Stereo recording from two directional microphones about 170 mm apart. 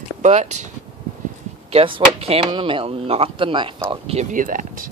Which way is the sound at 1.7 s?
35° right (ahead or behind).